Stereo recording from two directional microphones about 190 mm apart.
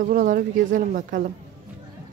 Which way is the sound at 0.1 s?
45° right (ahead or behind).